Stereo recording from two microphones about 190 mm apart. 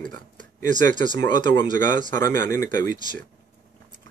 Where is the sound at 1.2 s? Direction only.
65° right (ahead or behind).